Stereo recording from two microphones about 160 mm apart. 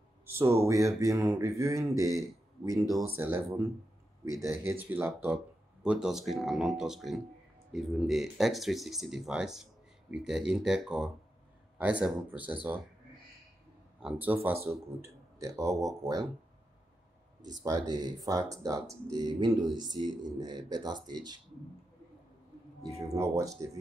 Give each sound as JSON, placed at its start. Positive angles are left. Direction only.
{"t": 0.2, "sound": "speech", "side_deg": -15}
{"t": 3.2, "sound": "speech", "side_deg": -15}
{"t": 14.0, "sound": "speech", "side_deg": -10}
{"t": 17.6, "sound": "speech", "side_deg": -25}
{"t": 22.9, "sound": "speech", "side_deg": -20}